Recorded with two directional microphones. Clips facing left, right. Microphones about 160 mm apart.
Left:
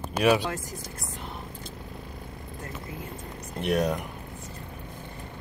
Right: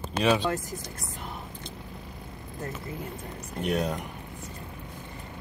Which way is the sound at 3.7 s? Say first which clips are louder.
Left 3 dB; 10° left (ahead or behind).